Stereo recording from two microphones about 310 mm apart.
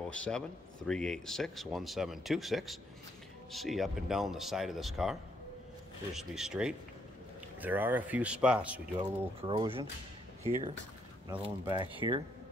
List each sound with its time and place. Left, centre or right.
0.1 s speech: centre
6.1 s speech: centre
11.4 s speech: centre